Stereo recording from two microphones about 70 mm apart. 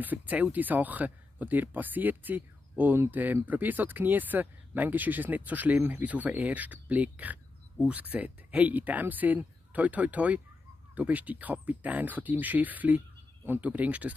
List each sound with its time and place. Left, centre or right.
0.0 s speech: right